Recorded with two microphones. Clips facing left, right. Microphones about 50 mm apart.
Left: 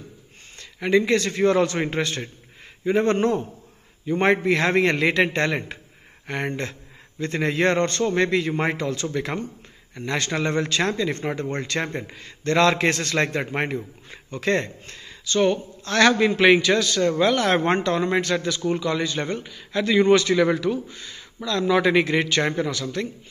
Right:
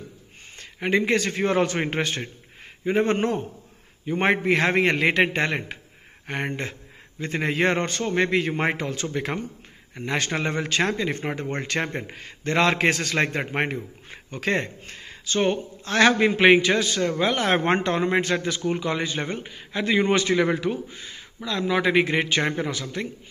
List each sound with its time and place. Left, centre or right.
0.6 s a man's voice: right
17.0 s a man's voice: centre
17.3 s a man's voice: right
22.0 s speech: right